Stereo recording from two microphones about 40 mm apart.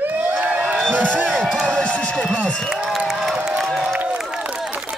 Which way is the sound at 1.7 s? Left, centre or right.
Left.